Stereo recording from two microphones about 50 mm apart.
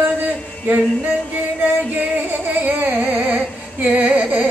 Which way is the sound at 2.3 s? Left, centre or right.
Right.